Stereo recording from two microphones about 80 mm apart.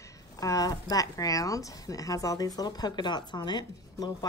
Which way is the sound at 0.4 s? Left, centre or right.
Left.